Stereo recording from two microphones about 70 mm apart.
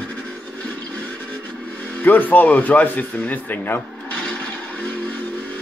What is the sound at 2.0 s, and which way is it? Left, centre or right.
A man's voice, left.